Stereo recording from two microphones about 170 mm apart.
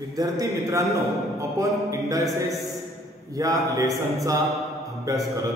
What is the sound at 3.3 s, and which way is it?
Speech, 20° right (ahead or behind).